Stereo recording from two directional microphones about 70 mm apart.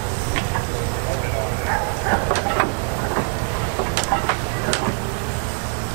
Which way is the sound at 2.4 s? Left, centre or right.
Centre.